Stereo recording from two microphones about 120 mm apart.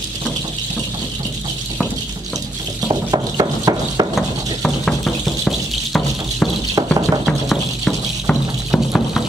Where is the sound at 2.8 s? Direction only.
35° right (ahead or behind).